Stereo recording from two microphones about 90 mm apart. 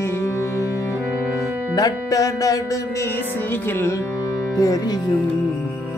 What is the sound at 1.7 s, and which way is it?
Music, 40° left (ahead or behind).